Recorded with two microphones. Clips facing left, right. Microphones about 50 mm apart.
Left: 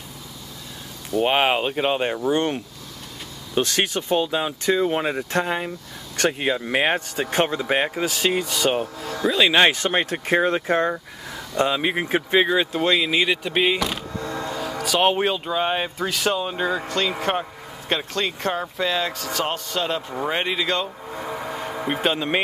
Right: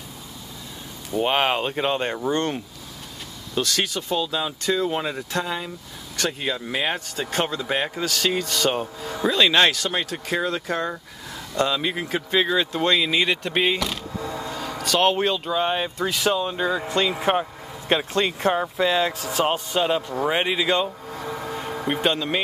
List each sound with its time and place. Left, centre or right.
1.2 s speech: centre
3.5 s speech: left
6.4 s speech: left
6.7 s speech: left
7.2 s speech: left; by 9.6 s centre
9.6 s speech: left
12.7 s speech: centre
14.2 s speech: centre
16.8 s speech: centre
20.2 s speech: centre
21.1 s vehicle: centre